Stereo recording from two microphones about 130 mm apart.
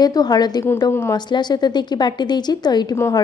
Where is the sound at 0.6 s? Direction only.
20° left (ahead or behind).